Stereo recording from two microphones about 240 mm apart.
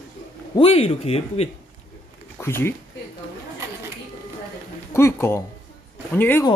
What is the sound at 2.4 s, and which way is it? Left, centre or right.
Speech, centre.